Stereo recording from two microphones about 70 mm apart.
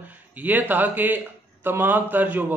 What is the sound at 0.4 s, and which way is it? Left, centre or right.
Speech, right.